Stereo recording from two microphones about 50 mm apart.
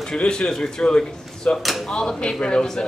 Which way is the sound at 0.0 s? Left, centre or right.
Centre.